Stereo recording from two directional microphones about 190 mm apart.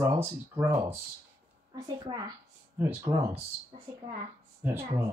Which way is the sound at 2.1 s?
20° right (ahead or behind).